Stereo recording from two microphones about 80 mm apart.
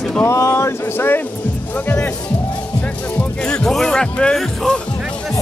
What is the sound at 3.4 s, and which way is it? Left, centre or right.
Music, centre.